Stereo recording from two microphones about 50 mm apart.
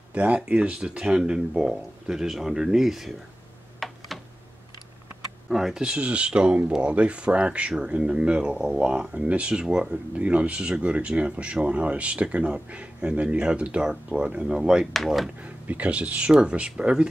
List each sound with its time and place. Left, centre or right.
0.1 s speech: right; by 3.2 s centre
3.8 s computer keyboard: centre
5.5 s speech: centre
5.9 s speech: right
15.4 s speech: right